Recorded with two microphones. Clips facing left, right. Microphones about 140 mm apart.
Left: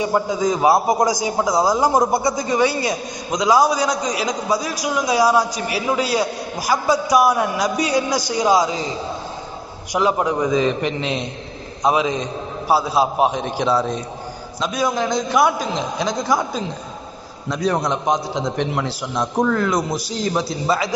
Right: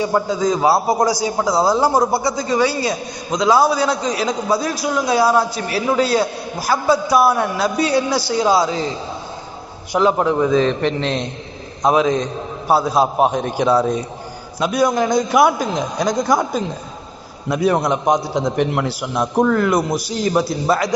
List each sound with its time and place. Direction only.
0.0 s a man's voice: 15° left (ahead or behind)
9.9 s a man's voice: 10° left (ahead or behind)